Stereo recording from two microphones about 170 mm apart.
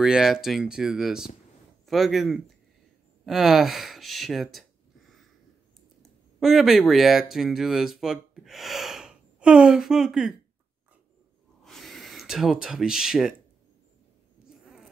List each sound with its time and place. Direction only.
0.0 s speech: 5° right (ahead or behind)
6.4 s speech: centre (ahead or behind)
11.6 s a sound: centre (ahead or behind)